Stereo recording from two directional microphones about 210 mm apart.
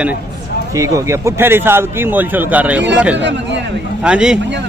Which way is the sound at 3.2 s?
60° right (ahead or behind).